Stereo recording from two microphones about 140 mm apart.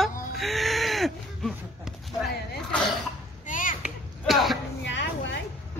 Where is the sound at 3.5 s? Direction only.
70° left (ahead or behind).